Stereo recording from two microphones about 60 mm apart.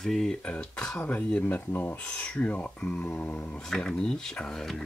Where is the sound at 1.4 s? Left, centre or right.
Left.